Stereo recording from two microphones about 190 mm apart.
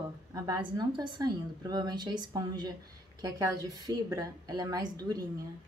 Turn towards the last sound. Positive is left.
turn(degrees=-20)  # may be behind; listen again after turning